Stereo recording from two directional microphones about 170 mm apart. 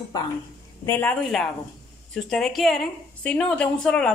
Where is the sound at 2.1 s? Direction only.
Centre (ahead or behind).